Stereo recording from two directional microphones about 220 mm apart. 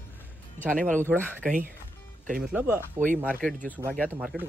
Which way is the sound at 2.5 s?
10° right (ahead or behind).